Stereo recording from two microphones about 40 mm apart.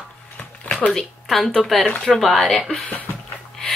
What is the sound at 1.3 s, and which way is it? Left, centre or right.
A woman's voice, centre.